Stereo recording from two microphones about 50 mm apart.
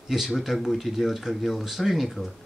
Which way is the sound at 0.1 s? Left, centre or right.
Centre.